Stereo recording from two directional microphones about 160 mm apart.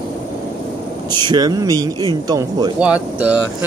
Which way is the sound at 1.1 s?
25° right (ahead or behind).